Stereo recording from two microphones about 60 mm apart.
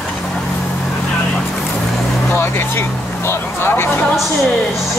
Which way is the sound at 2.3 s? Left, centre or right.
Left.